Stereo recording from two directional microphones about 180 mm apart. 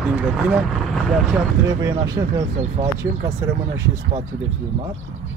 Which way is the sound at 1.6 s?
20° right (ahead or behind).